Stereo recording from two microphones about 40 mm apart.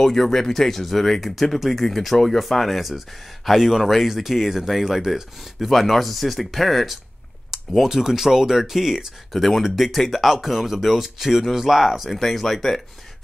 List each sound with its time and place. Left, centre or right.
0.0 s speech: centre
9.3 s speech: centre
12.1 s speech: centre